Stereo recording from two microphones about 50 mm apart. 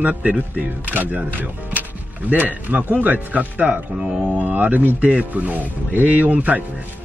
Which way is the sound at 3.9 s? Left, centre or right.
Centre.